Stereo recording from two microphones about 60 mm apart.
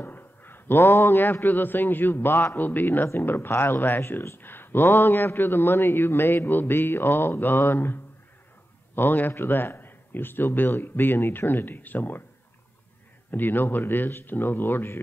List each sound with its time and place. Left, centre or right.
0.0 s a man's voice: left
13.3 s a man's voice: left